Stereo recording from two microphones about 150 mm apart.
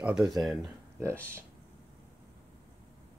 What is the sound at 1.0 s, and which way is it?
Speech, 15° right (ahead or behind).